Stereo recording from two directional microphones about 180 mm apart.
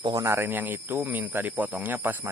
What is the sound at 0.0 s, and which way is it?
Speech, 20° right (ahead or behind).